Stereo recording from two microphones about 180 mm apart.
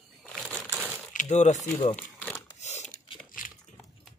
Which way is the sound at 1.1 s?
40° left (ahead or behind).